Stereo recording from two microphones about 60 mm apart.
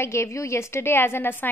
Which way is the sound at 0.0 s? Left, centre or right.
Left.